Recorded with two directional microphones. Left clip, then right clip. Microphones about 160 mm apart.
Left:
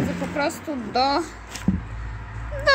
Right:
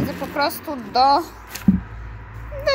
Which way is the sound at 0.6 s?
Centre (ahead or behind).